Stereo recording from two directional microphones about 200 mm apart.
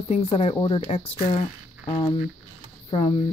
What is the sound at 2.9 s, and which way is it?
Speech, 25° left (ahead or behind).